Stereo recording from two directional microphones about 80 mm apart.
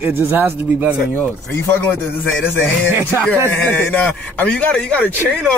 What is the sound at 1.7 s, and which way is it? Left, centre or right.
Speech, left.